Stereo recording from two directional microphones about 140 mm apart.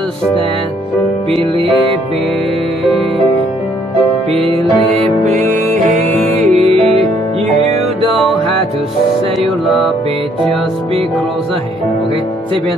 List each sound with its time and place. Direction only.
4.3 s music: 40° right (ahead or behind)
5.2 s music: 60° right (ahead or behind); by 8.1 s 45° right (ahead or behind)
8.1 s music: centre (ahead or behind)